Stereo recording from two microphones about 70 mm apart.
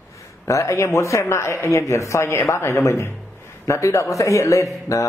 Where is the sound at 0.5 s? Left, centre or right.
Left.